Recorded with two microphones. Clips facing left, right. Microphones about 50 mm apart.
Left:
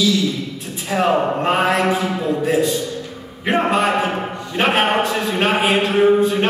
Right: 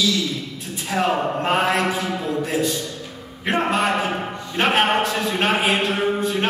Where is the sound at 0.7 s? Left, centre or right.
Centre.